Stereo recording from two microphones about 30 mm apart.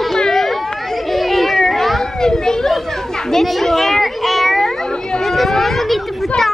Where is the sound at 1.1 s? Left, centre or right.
Centre.